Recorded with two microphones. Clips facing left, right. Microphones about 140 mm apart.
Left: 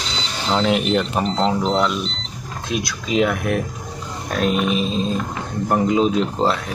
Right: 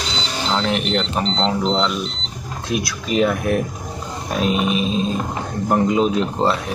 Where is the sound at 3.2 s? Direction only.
Centre (ahead or behind).